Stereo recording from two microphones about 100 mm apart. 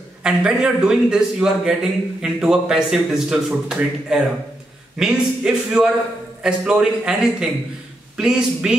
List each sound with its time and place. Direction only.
0.2 s a man's voice: 5° right (ahead or behind)